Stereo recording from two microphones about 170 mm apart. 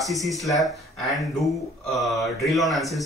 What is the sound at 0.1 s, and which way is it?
Speech, centre (ahead or behind).